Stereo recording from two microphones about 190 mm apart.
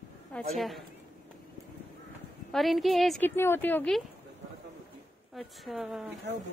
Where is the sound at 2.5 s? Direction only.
Centre (ahead or behind).